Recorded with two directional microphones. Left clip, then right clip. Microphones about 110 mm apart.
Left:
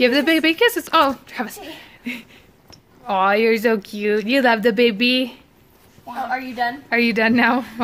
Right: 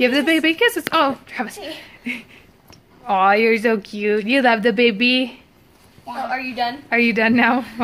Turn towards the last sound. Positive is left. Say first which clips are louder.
# right 1 dB
turn(degrees=10)  # may be behind; listen again after turning